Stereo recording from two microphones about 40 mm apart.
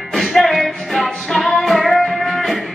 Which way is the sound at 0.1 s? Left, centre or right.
Centre.